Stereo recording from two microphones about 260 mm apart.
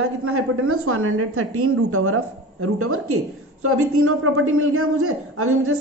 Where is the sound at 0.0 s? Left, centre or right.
Right.